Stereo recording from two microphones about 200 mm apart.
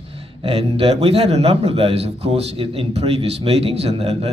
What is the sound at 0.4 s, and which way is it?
A man's voice, 30° right (ahead or behind).